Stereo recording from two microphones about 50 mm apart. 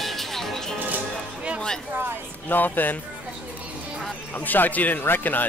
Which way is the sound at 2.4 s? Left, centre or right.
Left.